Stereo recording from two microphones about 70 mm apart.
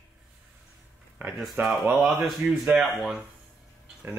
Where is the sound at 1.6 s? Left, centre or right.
Right.